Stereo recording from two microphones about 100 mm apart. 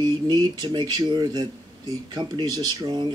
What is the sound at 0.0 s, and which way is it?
A man's voice, 40° right (ahead or behind).